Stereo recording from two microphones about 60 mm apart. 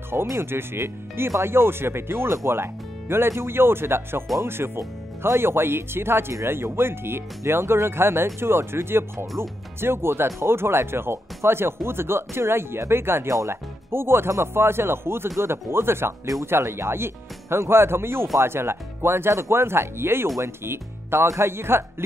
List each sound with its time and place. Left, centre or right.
0.4 s speech: right